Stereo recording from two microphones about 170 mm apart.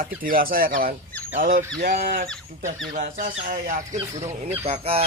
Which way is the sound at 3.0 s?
55° right (ahead or behind).